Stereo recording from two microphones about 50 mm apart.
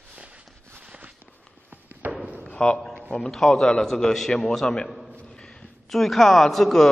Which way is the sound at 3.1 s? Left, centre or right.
Centre.